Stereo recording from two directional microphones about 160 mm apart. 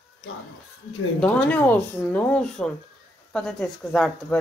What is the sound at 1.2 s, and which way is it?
Speech, 5° left (ahead or behind).